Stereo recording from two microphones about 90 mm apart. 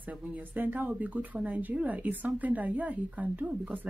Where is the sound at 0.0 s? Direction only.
15° right (ahead or behind).